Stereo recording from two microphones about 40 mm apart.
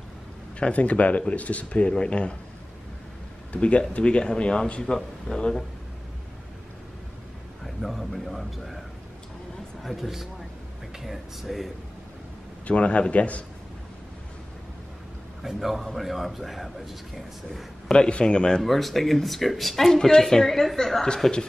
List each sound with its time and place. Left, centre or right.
0.7 s speech: left
3.5 s speech: left
4.8 s a woman's voice: centre
7.6 s a man's voice: centre
9.8 s a man's voice: centre
12.6 s speech: left
15.4 s a man's voice: centre
17.8 s speech: left
18.6 s a man's voice: centre
19.9 s a woman's voice: centre